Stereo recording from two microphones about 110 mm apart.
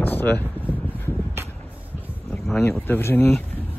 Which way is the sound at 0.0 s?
20° left (ahead or behind).